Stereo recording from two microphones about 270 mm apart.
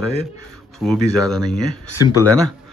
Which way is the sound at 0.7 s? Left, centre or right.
Centre.